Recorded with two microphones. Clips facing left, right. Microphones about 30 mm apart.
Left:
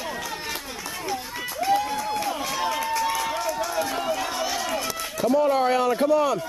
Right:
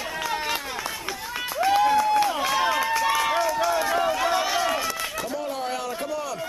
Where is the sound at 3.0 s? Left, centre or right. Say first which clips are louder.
Right 3 dB; centre.